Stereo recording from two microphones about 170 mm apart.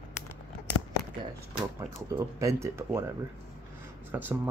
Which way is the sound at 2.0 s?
15° right (ahead or behind).